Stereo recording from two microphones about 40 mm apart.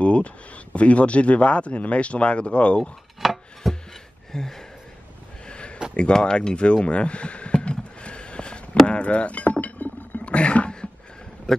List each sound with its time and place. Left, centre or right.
0.0 s speech: left
3.2 s chopping: centre
3.6 s a sound: centre
5.4 s a sound: left
8.8 s speech: left
10.2 s roaring cats: left